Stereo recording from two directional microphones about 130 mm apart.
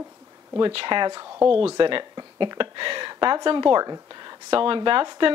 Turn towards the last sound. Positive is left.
turn(degrees=-35)  # may be behind; listen again after turning